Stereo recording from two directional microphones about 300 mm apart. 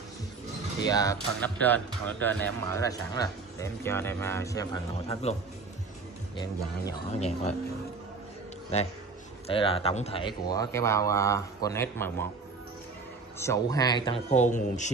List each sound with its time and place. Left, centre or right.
0.8 s speech: centre
9.5 s speech: centre
13.4 s speech: centre